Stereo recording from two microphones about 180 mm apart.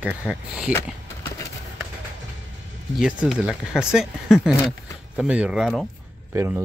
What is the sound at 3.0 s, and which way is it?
Speech, 5° right (ahead or behind).